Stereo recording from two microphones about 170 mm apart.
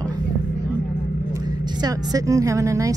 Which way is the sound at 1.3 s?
25° right (ahead or behind).